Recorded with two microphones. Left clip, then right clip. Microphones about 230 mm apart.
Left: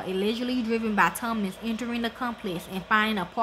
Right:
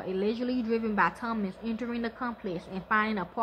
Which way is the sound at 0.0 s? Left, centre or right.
Left.